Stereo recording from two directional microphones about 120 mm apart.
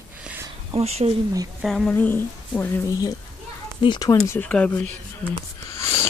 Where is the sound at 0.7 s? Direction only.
60° right (ahead or behind).